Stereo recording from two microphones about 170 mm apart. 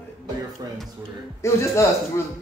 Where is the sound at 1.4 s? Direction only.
15° left (ahead or behind).